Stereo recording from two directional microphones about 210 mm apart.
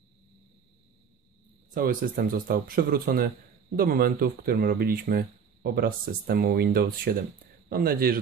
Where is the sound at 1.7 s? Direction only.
40° right (ahead or behind).